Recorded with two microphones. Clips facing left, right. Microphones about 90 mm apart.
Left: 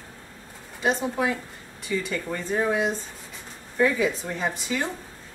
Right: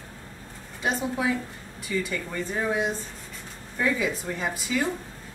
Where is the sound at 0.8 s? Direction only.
Centre (ahead or behind).